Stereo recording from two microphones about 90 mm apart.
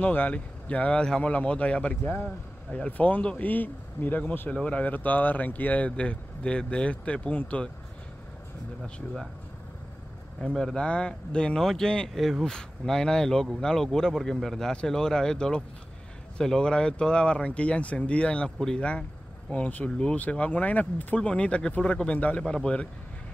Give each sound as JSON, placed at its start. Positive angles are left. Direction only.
{"t": 0.0, "sound": "speech", "side_deg": 20}
{"t": 10.5, "sound": "speech", "side_deg": 5}